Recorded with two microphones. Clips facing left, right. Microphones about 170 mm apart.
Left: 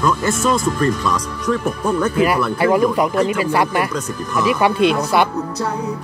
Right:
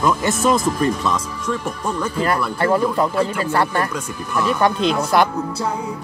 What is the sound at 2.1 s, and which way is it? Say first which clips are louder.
Speech: left 4 dB; 10° left (ahead or behind).